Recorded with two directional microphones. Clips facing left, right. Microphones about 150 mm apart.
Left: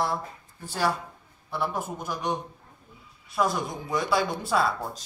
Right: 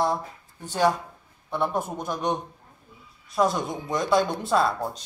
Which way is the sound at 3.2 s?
Centre (ahead or behind).